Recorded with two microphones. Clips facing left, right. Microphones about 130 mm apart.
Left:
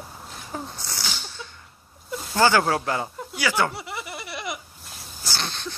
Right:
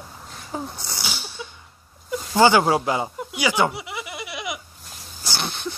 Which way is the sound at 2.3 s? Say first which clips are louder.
Right 3 dB; 15° right (ahead or behind).